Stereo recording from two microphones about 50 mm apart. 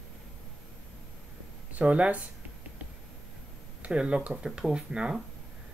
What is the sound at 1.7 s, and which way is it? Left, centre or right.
Speech, right.